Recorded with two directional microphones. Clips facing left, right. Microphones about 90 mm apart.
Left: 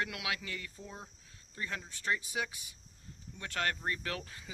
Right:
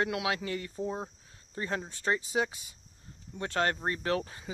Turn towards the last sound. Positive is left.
turn(degrees=-30)  # may be behind; listen again after turning